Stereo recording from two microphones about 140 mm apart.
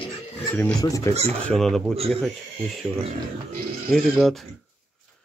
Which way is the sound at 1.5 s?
5° left (ahead or behind).